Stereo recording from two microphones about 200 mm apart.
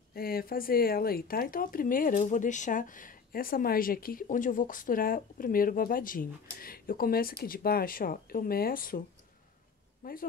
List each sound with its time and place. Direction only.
0.1 s speech: 50° left (ahead or behind)
10.0 s a man's voice: 45° left (ahead or behind)